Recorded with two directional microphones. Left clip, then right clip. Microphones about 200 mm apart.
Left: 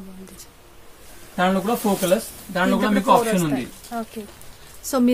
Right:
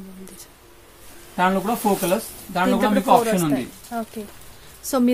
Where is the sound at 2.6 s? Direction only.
10° right (ahead or behind).